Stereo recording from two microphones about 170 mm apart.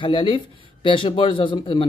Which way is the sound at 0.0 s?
30° left (ahead or behind).